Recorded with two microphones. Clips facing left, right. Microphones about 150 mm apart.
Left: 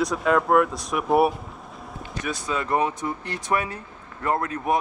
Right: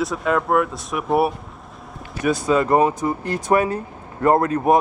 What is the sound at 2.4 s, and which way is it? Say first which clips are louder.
Speech: right 7 dB; 45° right (ahead or behind).